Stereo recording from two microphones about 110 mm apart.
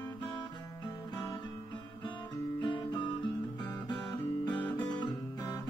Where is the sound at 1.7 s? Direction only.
45° left (ahead or behind).